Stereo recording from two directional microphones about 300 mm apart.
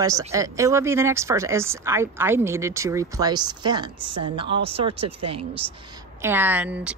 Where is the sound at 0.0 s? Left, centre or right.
Centre.